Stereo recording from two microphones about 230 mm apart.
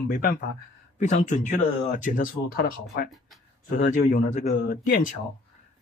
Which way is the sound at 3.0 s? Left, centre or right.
Centre.